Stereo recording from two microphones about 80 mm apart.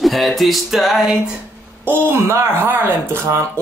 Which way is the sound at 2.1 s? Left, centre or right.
Right.